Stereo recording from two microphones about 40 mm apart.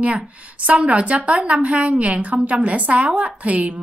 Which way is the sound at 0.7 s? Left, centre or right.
Right.